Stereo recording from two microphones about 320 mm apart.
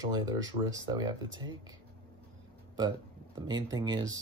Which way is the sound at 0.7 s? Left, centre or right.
Centre.